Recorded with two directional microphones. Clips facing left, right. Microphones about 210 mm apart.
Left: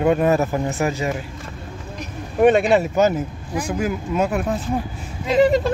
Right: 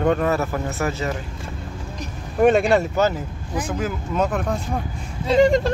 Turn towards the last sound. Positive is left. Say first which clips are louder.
# even
turn(degrees=5)  # may be behind; listen again after turning